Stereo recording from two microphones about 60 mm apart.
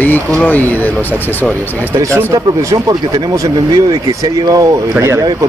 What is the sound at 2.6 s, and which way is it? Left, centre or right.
Speech, right.